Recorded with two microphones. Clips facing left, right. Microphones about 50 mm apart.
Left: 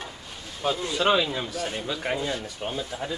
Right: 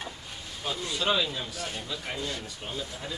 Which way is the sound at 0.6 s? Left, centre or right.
Left.